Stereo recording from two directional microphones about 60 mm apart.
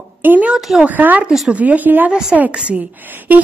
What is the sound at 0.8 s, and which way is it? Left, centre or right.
A woman's voice, right.